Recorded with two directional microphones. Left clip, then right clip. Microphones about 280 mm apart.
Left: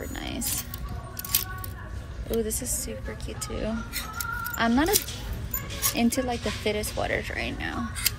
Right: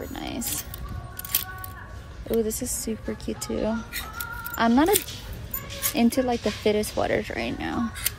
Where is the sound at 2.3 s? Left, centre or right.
Right.